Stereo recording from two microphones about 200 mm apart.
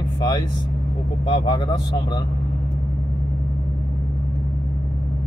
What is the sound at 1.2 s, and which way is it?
Speech, 30° left (ahead or behind).